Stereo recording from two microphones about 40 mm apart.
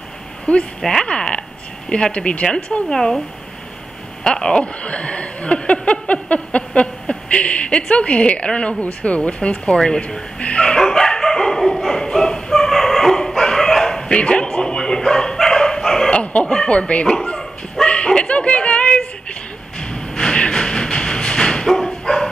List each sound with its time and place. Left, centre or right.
0.5 s speech: left
0.8 s speech: centre
1.9 s speech: left
2.9 s speech: centre
4.2 s a woman's voice: centre
10.8 s dog: centre
14.0 s bow-wow: left
16.1 s chicken: left
16.6 s speech: left
17.8 s dog: left
19.8 s a sound: centre
22.0 s dog: centre